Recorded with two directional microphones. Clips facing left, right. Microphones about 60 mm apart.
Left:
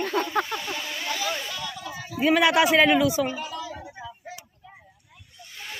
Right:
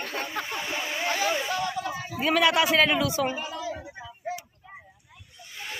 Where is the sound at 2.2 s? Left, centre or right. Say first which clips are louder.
Left 3 dB; centre.